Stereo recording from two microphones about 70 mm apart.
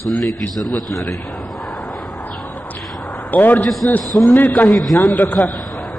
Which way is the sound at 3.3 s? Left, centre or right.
Left.